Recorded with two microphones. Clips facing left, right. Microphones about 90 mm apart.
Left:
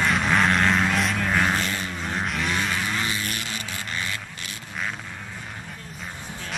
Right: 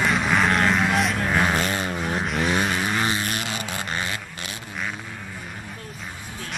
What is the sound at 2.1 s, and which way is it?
Vehicle, centre (ahead or behind).